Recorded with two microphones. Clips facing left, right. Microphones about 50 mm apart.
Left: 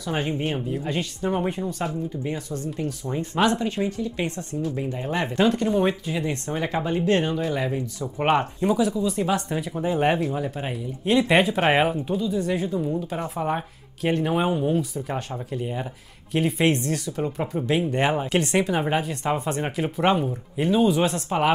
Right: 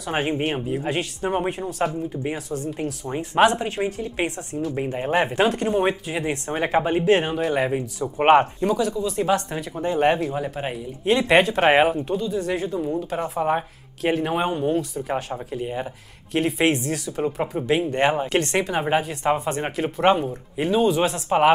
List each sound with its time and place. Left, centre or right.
0.1 s speech: right
0.6 s speech: centre; by 2.9 s right
3.4 s speech: right
3.9 s speech: right
7.1 s speech: centre
7.3 s speech: right
8.6 s speech: centre
10.2 s speech: centre